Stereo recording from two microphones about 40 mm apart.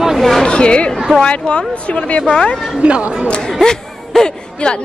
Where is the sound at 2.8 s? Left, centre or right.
Right.